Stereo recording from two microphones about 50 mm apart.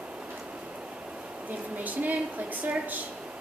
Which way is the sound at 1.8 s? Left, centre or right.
Right.